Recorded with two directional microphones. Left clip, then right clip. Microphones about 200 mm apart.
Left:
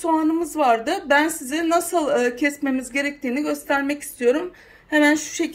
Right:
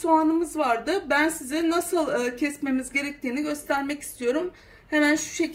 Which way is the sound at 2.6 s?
30° left (ahead or behind).